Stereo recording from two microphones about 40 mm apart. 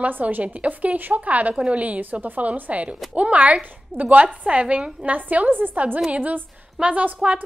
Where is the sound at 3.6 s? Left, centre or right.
Right.